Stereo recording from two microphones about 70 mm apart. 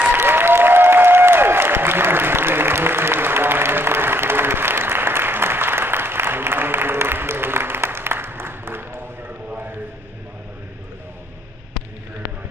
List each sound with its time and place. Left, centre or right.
0.1 s applause: right